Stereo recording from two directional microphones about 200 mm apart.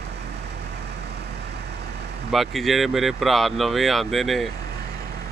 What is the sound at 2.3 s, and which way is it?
Speech, centre (ahead or behind).